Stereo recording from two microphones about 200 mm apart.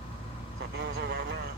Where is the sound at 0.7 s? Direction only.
60° right (ahead or behind).